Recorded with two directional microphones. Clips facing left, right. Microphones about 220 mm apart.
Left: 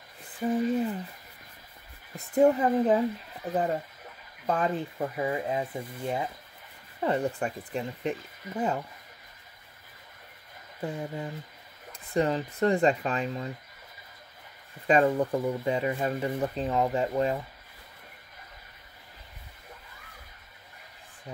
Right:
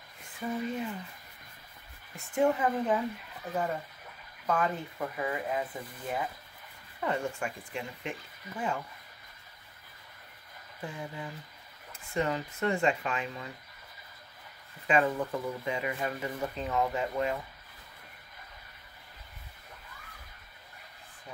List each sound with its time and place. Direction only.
0.2 s speech: 35° left (ahead or behind)
2.1 s speech: 40° left (ahead or behind)
10.8 s speech: 35° left (ahead or behind)
14.9 s speech: 35° left (ahead or behind)